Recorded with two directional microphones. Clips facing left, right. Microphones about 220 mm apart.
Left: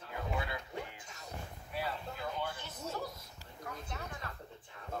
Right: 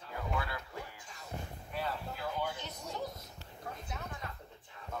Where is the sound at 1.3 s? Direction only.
20° right (ahead or behind).